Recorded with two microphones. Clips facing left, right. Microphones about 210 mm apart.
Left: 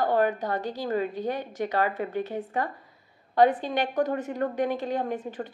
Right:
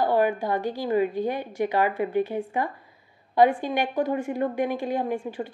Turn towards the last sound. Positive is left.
turn(degrees=-10)  # may be behind; listen again after turning